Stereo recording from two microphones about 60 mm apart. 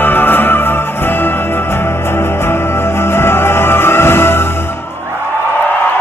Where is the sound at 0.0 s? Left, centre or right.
Left.